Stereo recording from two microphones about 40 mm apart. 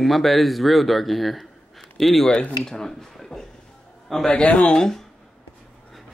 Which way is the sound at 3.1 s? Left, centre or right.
Centre.